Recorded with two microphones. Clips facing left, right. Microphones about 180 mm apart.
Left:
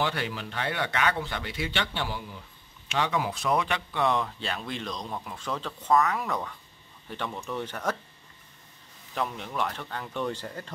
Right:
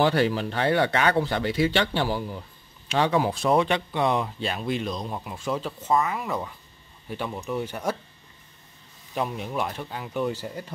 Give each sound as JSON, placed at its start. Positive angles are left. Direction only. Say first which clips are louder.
{"t": 0.0, "sound": "speech", "louder": "right 9 dB", "side_deg": -35}
{"t": 9.1, "sound": "speech", "louder": "right 4 dB", "side_deg": -20}